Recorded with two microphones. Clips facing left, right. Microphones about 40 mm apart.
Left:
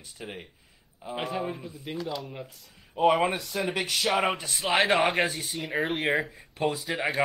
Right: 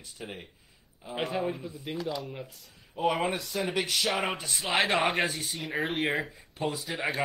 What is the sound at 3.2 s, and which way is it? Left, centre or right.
Speech, left.